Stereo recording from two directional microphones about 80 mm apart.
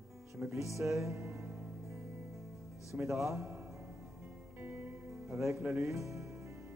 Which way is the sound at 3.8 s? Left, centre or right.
Right.